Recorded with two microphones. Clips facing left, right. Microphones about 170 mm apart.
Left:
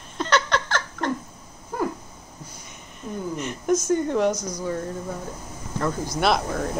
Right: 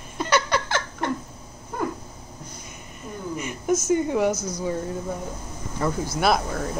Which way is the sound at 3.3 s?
5° right (ahead or behind).